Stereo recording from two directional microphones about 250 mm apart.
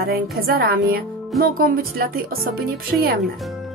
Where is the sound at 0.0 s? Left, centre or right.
Right.